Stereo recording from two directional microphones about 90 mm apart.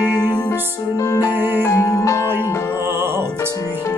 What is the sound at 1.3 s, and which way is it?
Music, 25° right (ahead or behind).